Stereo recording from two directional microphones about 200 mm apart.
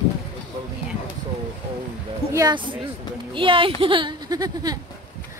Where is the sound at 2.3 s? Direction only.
20° right (ahead or behind).